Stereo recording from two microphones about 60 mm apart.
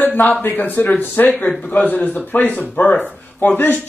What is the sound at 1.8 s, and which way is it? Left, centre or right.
Speech, left.